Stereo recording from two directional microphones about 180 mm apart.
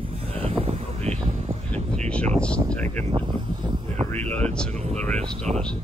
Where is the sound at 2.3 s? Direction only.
5° left (ahead or behind).